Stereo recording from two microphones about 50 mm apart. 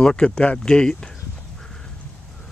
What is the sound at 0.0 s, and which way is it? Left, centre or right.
Speech, centre.